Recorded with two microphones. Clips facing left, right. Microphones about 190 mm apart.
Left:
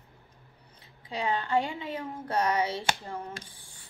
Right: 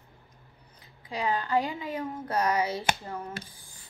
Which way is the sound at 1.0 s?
30° left (ahead or behind).